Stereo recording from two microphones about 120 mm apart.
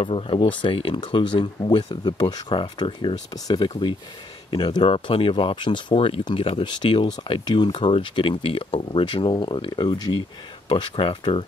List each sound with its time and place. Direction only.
0.0 s speech: 50° left (ahead or behind)